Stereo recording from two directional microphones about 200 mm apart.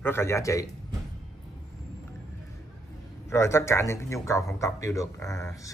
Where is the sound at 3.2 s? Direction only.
15° left (ahead or behind).